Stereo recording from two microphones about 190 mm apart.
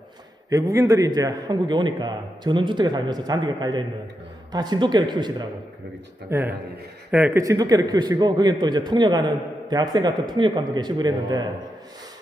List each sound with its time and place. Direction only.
0.5 s a man's voice: 20° right (ahead or behind)
6.3 s a man's voice: 10° right (ahead or behind)